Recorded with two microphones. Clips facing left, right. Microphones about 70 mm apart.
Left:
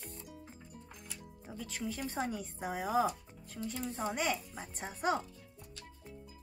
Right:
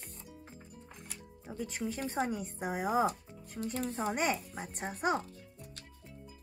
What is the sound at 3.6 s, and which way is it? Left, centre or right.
Speech, right.